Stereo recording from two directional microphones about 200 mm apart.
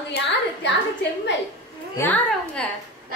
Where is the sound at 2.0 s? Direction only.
5° left (ahead or behind).